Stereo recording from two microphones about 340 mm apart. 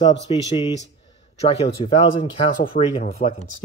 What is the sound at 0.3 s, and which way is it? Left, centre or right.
Speech, centre.